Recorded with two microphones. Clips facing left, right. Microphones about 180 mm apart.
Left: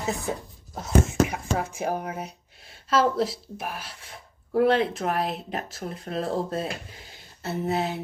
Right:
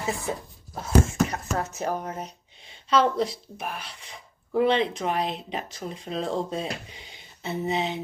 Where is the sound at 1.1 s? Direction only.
10° left (ahead or behind).